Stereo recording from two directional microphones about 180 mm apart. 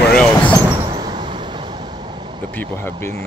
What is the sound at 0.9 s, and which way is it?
Vehicle, 25° right (ahead or behind).